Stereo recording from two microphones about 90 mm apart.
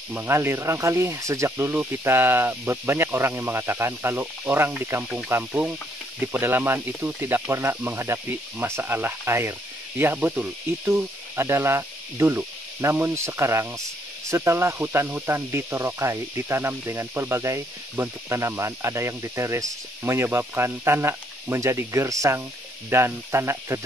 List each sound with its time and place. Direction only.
0.1 s speech: 25° right (ahead or behind)
1.7 s speech: 25° right (ahead or behind)